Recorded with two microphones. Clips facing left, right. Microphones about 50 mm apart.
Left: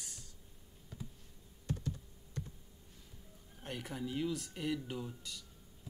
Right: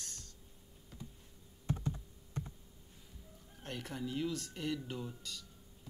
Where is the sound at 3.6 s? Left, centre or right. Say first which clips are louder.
Even; centre.